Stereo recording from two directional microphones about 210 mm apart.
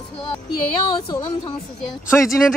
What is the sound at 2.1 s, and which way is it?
Speech, 10° left (ahead or behind).